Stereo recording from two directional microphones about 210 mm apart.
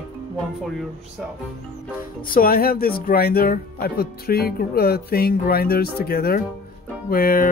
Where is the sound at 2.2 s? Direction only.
45° left (ahead or behind).